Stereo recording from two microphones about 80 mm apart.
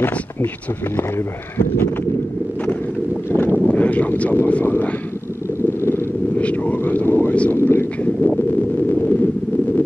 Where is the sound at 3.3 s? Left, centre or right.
Centre.